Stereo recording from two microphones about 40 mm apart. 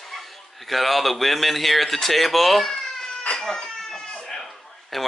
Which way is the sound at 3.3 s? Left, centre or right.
Centre.